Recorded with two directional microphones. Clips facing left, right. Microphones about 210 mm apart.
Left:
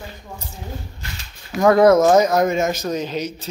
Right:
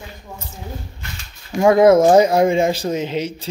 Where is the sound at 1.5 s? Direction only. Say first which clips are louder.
Right 1 dB; 25° right (ahead or behind).